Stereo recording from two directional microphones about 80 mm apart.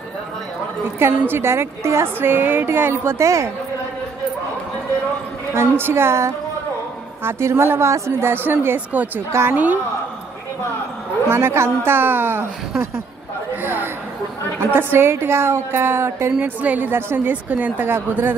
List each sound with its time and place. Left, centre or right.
0.9 s a woman's voice: right
5.5 s a woman's voice: right
11.2 s a woman's voice: right
13.6 s a sound: right
14.6 s a woman's voice: right
16.3 s a woman's voice: right